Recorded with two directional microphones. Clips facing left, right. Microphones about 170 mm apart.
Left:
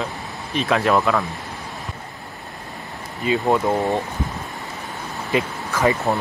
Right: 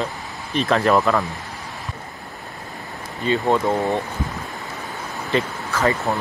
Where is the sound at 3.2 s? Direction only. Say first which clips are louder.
Even; 5° left (ahead or behind).